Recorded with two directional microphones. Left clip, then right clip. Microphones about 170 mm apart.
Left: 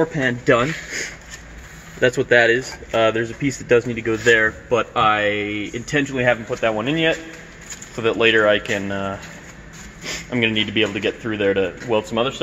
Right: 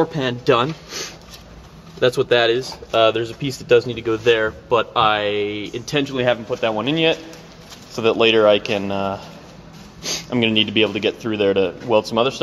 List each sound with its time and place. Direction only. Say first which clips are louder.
0.1 s speech: even; 5° left (ahead or behind)
2.2 s speech: left 2 dB; centre (ahead or behind)
5.5 s speech: left 1 dB; 50° right (ahead or behind)
5.9 s speech: even; 5° left (ahead or behind); by 12.4 s 15° right (ahead or behind)